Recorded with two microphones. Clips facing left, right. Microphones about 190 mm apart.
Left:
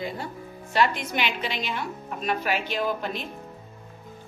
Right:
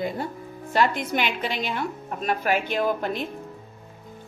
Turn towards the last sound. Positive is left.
turn(degrees=-50)  # may be behind; listen again after turning